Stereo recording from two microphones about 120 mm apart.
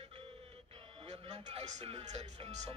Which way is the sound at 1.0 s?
65° right (ahead or behind).